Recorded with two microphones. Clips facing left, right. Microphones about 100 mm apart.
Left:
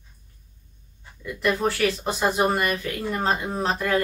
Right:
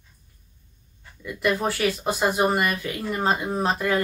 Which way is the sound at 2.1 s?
10° right (ahead or behind).